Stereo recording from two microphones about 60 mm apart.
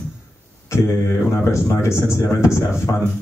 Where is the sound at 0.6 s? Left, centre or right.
Left.